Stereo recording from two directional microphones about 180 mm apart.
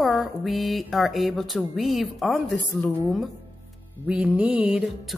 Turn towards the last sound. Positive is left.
turn(degrees=-5)  # may be behind; listen again after turning